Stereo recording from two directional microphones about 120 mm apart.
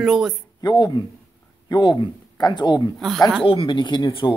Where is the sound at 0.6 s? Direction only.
35° left (ahead or behind).